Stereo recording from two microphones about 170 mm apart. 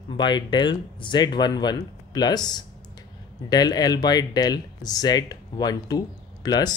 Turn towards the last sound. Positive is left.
turn(degrees=25)  # may be behind; listen again after turning